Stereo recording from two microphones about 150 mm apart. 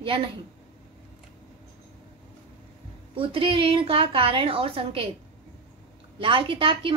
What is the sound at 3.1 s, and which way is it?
A woman's voice, 40° right (ahead or behind).